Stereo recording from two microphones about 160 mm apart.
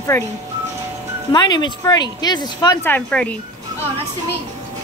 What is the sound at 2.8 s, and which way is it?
Speech, 10° left (ahead or behind).